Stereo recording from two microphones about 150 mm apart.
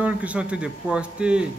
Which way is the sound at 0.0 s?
10° right (ahead or behind).